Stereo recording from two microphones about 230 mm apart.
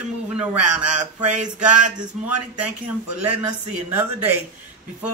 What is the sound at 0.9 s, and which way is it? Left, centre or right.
Speech, right.